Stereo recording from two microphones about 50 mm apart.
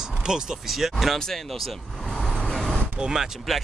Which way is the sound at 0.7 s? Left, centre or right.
Centre.